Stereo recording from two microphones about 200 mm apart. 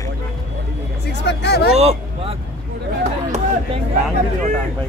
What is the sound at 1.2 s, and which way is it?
Speech, 60° left (ahead or behind).